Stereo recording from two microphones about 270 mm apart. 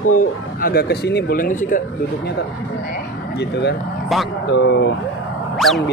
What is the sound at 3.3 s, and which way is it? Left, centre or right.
Speech, left.